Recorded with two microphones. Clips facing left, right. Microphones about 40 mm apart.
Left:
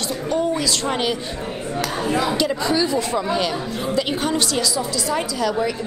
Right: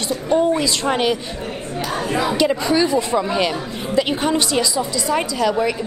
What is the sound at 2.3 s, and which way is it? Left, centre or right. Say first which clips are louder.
A woman's voice: right 3 dB; right.